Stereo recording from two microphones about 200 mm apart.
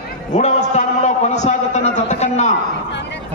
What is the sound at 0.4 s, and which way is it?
A man's voice, 35° left (ahead or behind).